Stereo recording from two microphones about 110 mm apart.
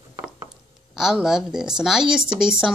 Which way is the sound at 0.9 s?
5° right (ahead or behind).